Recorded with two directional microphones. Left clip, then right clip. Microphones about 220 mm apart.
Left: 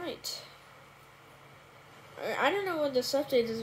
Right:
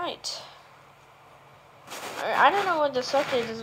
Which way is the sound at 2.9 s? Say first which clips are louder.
Right 3 dB; centre (ahead or behind).